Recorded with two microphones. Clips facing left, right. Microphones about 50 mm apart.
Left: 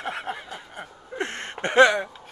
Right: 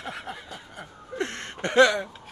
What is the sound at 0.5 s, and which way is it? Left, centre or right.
Speech, left.